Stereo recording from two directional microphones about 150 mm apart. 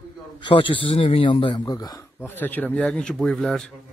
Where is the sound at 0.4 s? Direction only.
35° left (ahead or behind).